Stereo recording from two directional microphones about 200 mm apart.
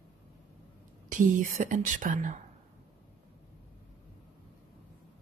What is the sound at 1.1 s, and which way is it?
A woman's voice, 40° right (ahead or behind).